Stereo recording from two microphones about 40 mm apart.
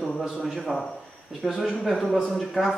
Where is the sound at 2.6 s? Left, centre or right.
Centre.